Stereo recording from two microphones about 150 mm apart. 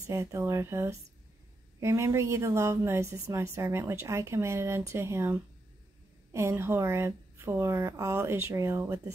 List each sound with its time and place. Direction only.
0.0 s a woman's voice: 20° right (ahead or behind)